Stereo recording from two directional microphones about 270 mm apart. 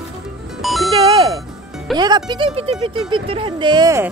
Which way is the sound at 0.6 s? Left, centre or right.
Centre.